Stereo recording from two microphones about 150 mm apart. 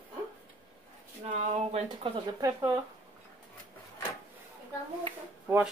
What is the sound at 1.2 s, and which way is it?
Speech, 50° right (ahead or behind).